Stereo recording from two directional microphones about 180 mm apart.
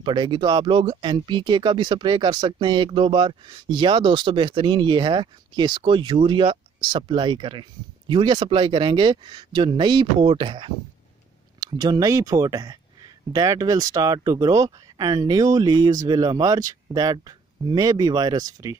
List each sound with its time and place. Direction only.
0.0 s speech: 25° right (ahead or behind)